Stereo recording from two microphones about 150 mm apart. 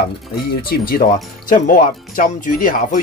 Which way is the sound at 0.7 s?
80° left.